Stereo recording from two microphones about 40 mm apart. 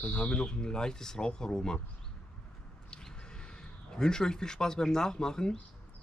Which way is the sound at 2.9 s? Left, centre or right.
Centre.